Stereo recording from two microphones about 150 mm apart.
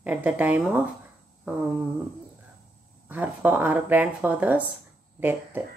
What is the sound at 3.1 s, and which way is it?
Speech, 10° right (ahead or behind).